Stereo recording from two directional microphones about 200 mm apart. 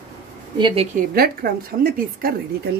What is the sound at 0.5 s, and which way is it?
Speech, 25° right (ahead or behind).